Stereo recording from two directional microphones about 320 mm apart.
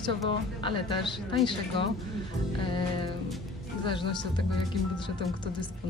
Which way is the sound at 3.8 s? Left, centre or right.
Centre.